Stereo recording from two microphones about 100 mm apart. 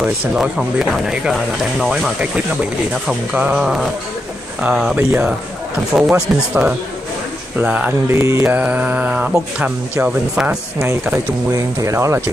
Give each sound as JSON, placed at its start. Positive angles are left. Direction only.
{"t": 0.0, "sound": "speech", "side_deg": -5}
{"t": 3.6, "sound": "speech", "side_deg": -5}
{"t": 4.9, "sound": "speech", "side_deg": -20}
{"t": 5.9, "sound": "speech", "side_deg": -5}
{"t": 8.2, "sound": "speech", "side_deg": -30}
{"t": 8.5, "sound": "speech", "side_deg": -15}
{"t": 11.5, "sound": "speech", "side_deg": -30}